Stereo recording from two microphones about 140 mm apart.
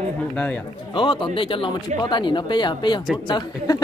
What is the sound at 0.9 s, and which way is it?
Speech, 35° left (ahead or behind).